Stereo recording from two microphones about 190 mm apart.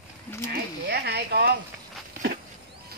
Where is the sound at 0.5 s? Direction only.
60° right (ahead or behind).